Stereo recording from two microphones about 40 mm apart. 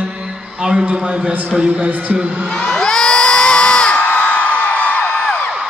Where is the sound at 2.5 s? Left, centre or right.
Centre.